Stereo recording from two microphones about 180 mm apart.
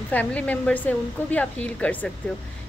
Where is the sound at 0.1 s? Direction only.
10° left (ahead or behind).